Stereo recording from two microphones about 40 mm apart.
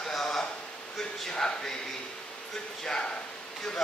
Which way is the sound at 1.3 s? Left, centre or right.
Left.